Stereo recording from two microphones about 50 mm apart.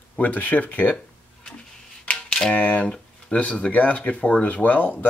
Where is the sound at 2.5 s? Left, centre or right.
Left.